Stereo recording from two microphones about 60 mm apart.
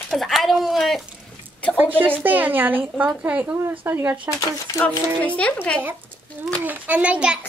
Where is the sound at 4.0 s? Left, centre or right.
Right.